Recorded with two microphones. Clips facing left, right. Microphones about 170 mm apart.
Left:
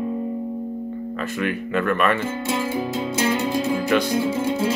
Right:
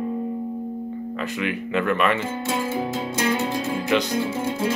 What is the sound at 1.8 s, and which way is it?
Speech, 15° right (ahead or behind).